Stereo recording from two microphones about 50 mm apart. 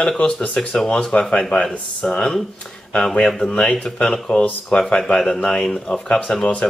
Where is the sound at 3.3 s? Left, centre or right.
Centre.